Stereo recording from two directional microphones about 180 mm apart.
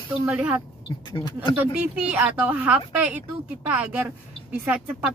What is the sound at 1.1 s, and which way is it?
Speech, 25° left (ahead or behind).